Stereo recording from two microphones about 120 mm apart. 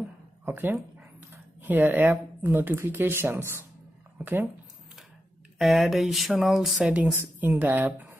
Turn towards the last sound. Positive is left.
turn(degrees=-15)  # may be behind; listen again after turning